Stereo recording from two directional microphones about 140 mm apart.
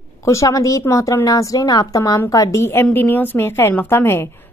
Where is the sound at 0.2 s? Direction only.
20° left (ahead or behind).